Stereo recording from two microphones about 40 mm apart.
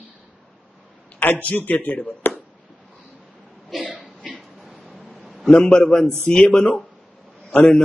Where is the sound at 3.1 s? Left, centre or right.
Left.